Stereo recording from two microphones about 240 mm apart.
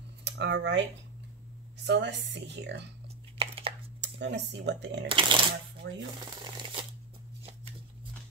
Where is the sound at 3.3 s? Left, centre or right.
Right.